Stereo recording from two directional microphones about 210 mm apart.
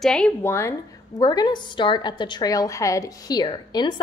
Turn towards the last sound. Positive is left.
turn(degrees=20)  # may be behind; listen again after turning